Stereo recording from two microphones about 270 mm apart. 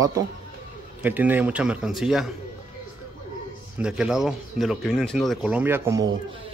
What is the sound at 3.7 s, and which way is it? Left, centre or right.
Speech, centre.